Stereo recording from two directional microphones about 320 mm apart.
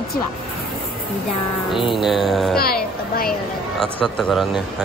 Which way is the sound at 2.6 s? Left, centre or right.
Left.